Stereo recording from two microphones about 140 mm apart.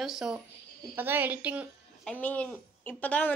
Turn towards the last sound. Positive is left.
turn(degrees=10)  # may be behind; listen again after turning